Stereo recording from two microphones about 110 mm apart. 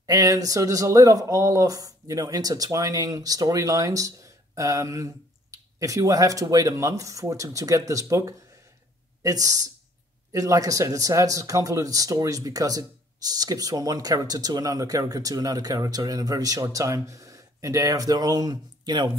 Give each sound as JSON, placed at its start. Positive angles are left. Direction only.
{"t": 0.0, "sound": "speech", "side_deg": -35}